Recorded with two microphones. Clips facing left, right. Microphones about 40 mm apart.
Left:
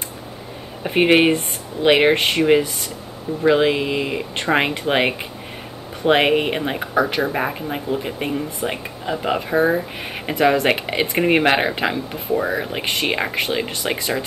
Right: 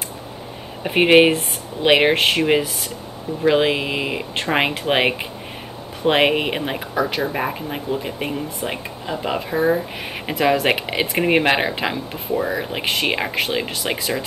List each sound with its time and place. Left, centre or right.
0.8 s speech: centre
7.0 s speech: centre
7.3 s speech: centre
12.4 s speech: centre
12.6 s speech: centre